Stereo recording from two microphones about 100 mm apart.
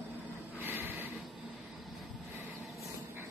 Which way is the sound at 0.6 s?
20° right (ahead or behind).